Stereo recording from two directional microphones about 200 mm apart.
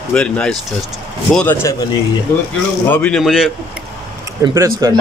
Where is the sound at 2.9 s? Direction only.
5° left (ahead or behind).